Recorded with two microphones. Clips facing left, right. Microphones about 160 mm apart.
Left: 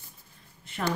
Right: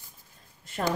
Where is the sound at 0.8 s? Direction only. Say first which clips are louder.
Right 1 dB; 35° right (ahead or behind).